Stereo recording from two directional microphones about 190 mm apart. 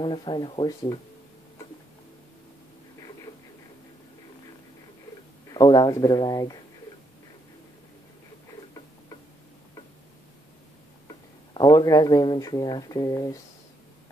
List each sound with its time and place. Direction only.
0.0 s speech: 25° left (ahead or behind)
5.5 s speech: 20° left (ahead or behind)
11.5 s speech: 20° left (ahead or behind)